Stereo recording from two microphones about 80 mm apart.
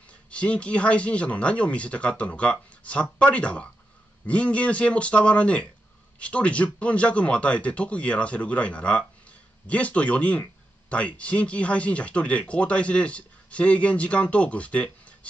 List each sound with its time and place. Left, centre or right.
0.3 s speech: centre